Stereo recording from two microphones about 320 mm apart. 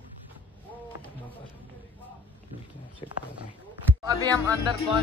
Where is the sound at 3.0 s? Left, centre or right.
Centre.